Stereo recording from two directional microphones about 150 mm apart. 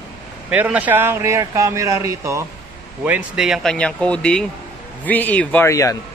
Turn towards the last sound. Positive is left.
turn(degrees=20)  # may be behind; listen again after turning